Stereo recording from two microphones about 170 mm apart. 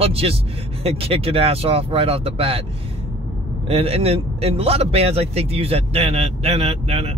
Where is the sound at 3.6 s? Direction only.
35° right (ahead or behind).